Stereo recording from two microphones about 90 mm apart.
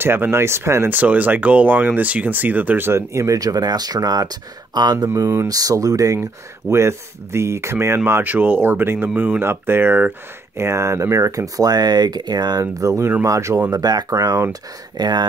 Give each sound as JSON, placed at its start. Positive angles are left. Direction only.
{"t": 0.0, "sound": "speech", "side_deg": -25}
{"t": 0.9, "sound": "speech", "side_deg": -20}
{"t": 10.6, "sound": "speech", "side_deg": -30}
{"t": 13.7, "sound": "speech", "side_deg": -45}